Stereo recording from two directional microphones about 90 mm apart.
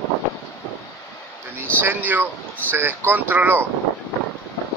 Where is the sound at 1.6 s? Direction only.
25° right (ahead or behind).